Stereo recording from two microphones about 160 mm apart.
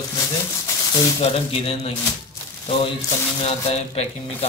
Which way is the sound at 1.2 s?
35° left (ahead or behind).